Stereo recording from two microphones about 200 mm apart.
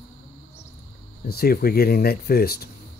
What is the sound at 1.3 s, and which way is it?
Speech, 50° left (ahead or behind).